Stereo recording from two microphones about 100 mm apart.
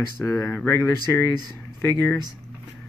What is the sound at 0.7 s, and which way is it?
Speech, 25° left (ahead or behind).